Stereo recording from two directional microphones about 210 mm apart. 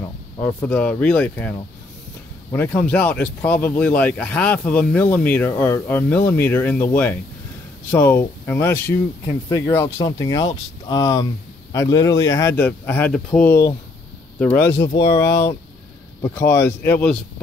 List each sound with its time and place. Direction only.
0.4 s speech: 10° left (ahead or behind)
2.5 s speech: 10° left (ahead or behind)